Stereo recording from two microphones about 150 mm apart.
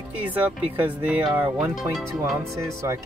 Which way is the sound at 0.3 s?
10° right (ahead or behind).